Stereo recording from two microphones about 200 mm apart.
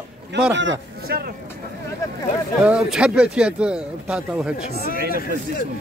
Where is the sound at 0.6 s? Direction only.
60° right (ahead or behind).